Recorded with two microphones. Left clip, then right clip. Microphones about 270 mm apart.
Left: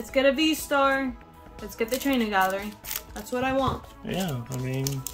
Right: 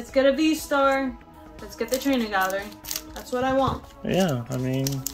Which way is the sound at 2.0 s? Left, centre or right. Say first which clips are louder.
Left 1 dB; left.